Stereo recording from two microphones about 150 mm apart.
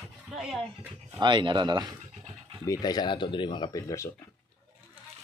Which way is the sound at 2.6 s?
25° left (ahead or behind).